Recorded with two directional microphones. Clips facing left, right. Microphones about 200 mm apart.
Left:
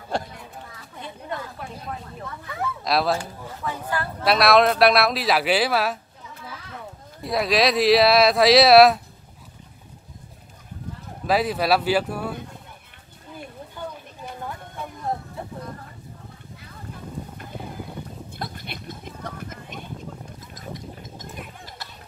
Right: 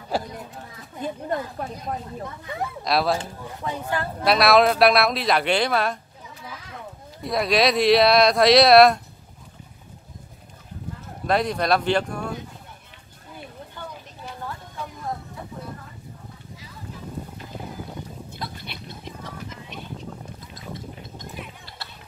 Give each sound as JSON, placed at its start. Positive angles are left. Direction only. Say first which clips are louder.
{"t": 0.1, "sound": "a sound", "louder": "right 1 dB", "side_deg": -5}
{"t": 1.0, "sound": "a woman's voice", "louder": "right 6 dB", "side_deg": -40}
{"t": 2.4, "sound": "speech", "louder": "left 1 dB", "side_deg": -25}
{"t": 2.8, "sound": "speech", "louder": "even", "side_deg": 0}
{"t": 3.6, "sound": "a woman's voice", "louder": "right 1 dB", "side_deg": -30}
{"t": 4.2, "sound": "speech", "louder": "even", "side_deg": 0}
{"t": 7.2, "sound": "speech", "louder": "even", "side_deg": 0}
{"t": 11.2, "sound": "speech", "louder": "left 1 dB", "side_deg": 5}
{"t": 16.5, "sound": "a sound", "louder": "even", "side_deg": 55}